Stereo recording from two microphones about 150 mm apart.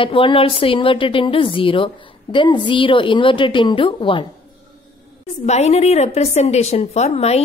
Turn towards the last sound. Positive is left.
turn(degrees=45)  # may be behind; listen again after turning